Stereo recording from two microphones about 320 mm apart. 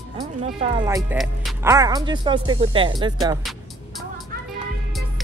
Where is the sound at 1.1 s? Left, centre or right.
Centre.